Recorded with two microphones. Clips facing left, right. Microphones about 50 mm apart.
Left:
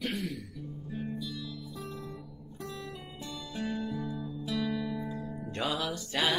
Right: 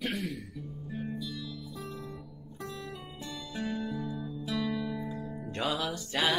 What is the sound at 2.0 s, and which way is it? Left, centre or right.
Guitar, right.